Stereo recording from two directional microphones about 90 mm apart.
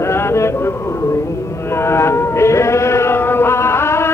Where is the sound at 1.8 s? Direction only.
30° left (ahead or behind).